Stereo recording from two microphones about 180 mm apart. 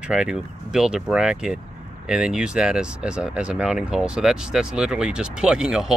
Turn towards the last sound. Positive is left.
turn(degrees=-5)  # may be behind; listen again after turning